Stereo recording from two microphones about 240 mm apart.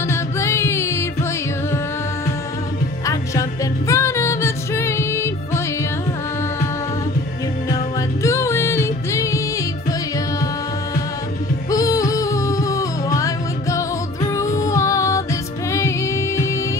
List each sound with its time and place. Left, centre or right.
0.1 s music: centre
3.1 s music: centre
7.7 s music: centre
11.7 s music: centre